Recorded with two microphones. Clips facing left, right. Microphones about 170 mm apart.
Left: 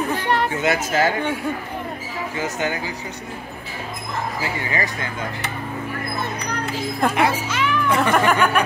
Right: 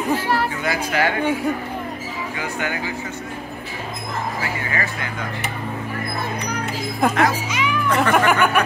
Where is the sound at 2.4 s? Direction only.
20° left (ahead or behind).